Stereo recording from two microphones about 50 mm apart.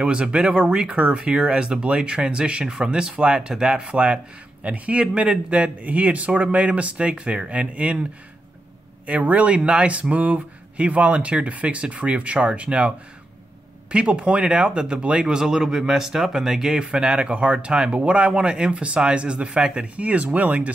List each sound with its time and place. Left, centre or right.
0.0 s speech: right
9.0 s speech: right
13.9 s speech: right